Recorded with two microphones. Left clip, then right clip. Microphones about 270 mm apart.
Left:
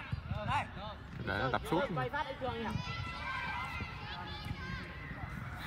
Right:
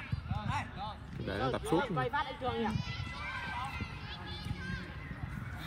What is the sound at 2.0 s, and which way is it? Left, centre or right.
Speech, right.